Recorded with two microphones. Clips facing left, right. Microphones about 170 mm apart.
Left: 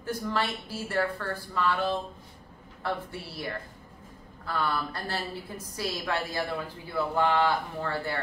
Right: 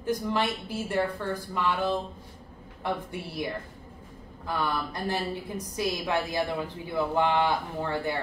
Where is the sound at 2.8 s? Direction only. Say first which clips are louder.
Right 1 dB; 15° right (ahead or behind).